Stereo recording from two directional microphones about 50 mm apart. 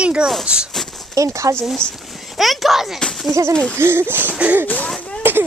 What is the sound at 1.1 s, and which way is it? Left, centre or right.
Speech, right.